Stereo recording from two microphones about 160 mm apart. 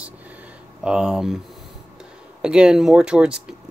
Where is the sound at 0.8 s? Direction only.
5° right (ahead or behind).